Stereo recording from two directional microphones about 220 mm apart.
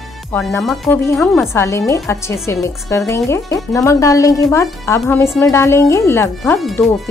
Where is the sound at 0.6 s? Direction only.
Centre (ahead or behind).